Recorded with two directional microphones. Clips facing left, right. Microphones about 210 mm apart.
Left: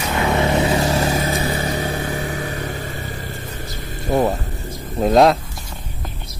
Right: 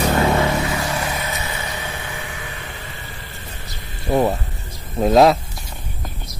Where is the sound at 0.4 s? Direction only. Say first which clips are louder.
Left 3 dB; 20° left (ahead or behind); by 4.1 s 45° left (ahead or behind).